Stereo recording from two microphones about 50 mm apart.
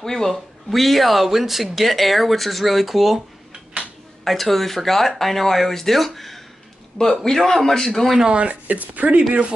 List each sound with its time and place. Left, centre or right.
0.0 s speech: centre
4.2 s a man's voice: centre
8.2 s speech: centre